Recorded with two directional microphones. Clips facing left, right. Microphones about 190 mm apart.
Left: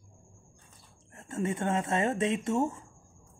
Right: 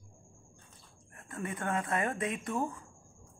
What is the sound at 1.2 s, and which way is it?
Speech, 25° left (ahead or behind).